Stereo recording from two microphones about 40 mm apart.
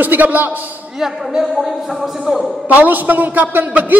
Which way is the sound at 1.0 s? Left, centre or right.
Centre.